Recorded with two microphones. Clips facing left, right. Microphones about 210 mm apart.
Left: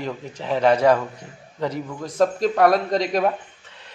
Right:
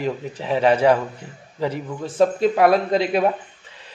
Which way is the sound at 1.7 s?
30° right (ahead or behind).